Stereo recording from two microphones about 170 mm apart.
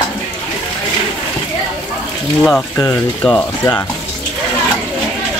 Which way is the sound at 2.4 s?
10° left (ahead or behind).